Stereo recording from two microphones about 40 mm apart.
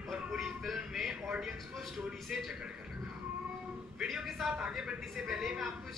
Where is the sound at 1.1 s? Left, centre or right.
Centre.